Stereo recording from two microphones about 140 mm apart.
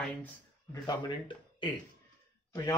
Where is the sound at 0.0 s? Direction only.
10° left (ahead or behind).